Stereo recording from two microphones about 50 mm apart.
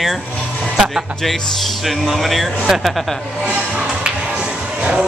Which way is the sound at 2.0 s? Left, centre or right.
Centre.